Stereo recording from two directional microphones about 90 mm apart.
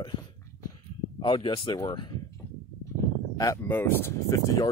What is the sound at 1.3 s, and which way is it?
Speech, 70° left (ahead or behind).